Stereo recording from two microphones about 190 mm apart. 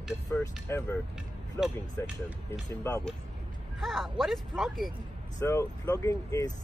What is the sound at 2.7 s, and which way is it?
Speech, 10° left (ahead or behind).